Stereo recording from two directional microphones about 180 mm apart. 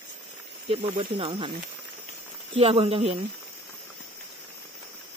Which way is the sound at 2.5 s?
35° right (ahead or behind).